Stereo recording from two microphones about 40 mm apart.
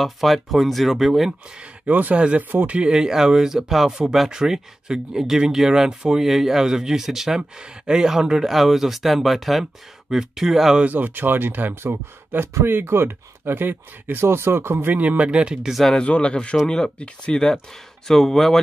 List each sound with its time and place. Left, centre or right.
0.0 s speech: centre
1.9 s speech: right
2.1 s speech: right
2.9 s speech: centre
10.9 s speech: right
11.7 s speech: right
14.2 s speech: right
14.9 s speech: right
16.0 s speech: left; by 18.6 s centre